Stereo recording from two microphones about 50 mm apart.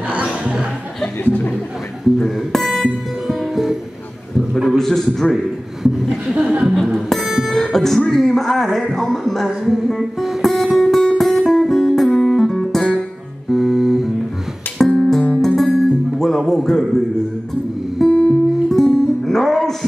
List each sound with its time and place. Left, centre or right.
0.2 s music: centre
1.2 s a sound: left
2.7 s music: centre
4.7 s a man's voice: centre
5.9 s chuckle: centre
6.3 s music: right
6.7 s music: centre
8.1 s a sound: centre
13.5 s music: centre
14.8 s music: centre
18.0 s music: centre